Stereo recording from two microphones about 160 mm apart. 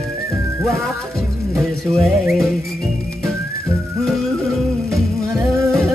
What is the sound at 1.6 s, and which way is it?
Music, centre (ahead or behind).